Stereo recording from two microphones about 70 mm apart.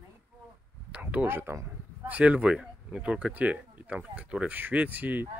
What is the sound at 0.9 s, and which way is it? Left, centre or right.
Speech, right.